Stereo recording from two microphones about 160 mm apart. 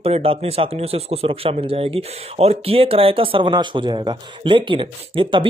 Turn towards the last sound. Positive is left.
turn(degrees=-30)  # may be behind; listen again after turning